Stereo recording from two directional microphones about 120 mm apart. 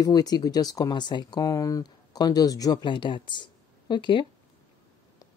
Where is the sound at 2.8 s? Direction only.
40° left (ahead or behind).